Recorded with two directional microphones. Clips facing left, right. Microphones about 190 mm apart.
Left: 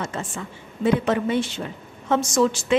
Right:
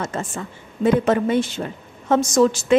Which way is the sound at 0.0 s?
45° right (ahead or behind).